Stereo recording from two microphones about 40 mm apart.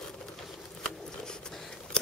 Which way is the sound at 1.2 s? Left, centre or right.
Centre.